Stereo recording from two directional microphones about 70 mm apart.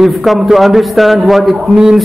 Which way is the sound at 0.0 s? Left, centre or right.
Centre.